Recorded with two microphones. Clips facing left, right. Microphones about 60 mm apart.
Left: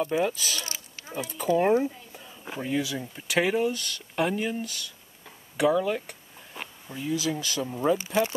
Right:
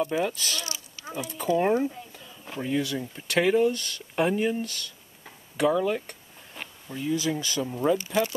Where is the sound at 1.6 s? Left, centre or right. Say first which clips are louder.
Left 1 dB; centre.